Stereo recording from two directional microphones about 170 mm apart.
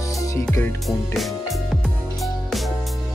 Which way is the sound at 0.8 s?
Centre (ahead or behind).